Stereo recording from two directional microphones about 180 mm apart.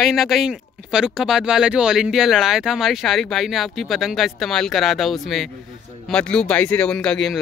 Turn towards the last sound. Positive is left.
turn(degrees=0)  # may be behind; listen again after turning